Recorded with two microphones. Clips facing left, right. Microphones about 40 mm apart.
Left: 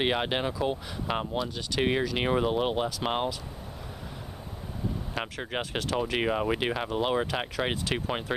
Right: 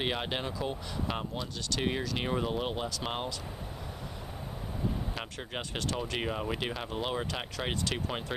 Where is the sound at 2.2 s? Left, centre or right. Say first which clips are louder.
Left 6 dB; left.